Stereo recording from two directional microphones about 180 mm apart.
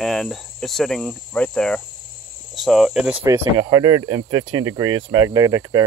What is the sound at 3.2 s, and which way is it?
Speech, 15° right (ahead or behind).